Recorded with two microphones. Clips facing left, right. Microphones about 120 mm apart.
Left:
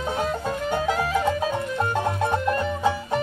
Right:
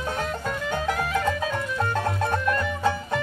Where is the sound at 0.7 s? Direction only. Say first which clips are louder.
Left 3 dB; 20° left (ahead or behind).